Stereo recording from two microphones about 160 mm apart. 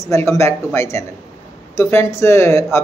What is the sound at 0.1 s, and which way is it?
Speech, 15° left (ahead or behind).